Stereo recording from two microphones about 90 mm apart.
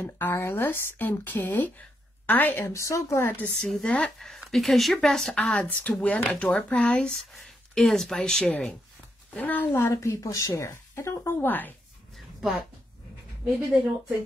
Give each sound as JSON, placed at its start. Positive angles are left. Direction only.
{"t": 0.0, "sound": "speech", "side_deg": 25}
{"t": 2.7, "sound": "a woman's voice", "side_deg": 35}
{"t": 3.6, "sound": "a woman's voice", "side_deg": 5}
{"t": 11.3, "sound": "speech", "side_deg": 20}
{"t": 12.4, "sound": "a woman's voice", "side_deg": -5}